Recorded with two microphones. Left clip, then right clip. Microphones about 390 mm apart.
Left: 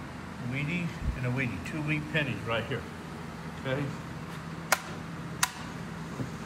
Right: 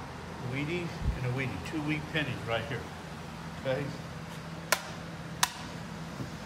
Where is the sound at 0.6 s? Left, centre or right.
Centre.